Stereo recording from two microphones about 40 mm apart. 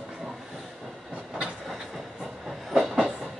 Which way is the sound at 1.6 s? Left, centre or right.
Centre.